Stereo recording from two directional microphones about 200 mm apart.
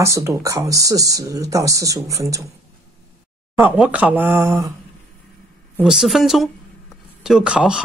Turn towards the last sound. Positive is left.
turn(degrees=-5)  # may be behind; listen again after turning